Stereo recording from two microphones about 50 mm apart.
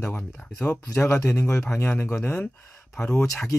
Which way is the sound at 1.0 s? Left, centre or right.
Left.